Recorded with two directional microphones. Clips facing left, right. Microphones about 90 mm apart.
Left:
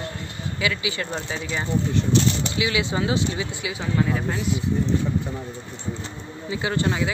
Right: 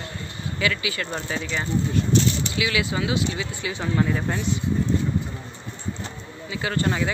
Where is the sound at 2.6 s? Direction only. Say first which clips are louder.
Left 1 dB; 25° left (ahead or behind).